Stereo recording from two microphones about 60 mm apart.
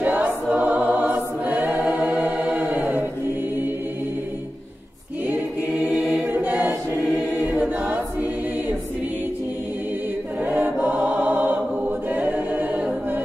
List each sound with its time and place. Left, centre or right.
0.0 s choir: right
5.2 s choir: right
10.4 s music: right
12.1 s a capella: right